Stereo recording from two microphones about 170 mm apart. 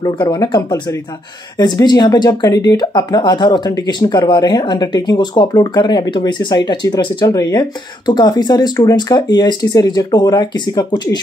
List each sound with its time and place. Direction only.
0.0 s speech: 20° left (ahead or behind)